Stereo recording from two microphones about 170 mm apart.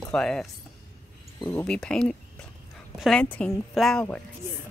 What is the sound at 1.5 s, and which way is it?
Speech, 5° left (ahead or behind).